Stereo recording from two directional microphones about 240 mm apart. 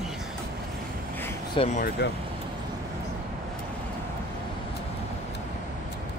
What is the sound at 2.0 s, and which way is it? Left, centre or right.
Speech, left.